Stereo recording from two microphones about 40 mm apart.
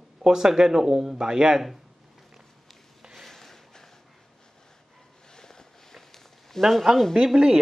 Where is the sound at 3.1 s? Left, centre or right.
Centre.